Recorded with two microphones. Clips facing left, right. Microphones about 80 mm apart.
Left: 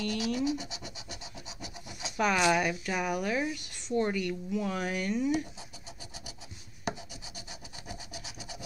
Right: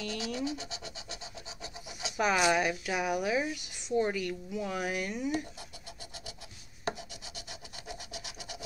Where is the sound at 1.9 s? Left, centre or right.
Centre.